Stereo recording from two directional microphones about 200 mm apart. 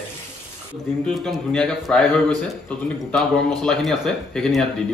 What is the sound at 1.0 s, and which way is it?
Speech, 5° left (ahead or behind).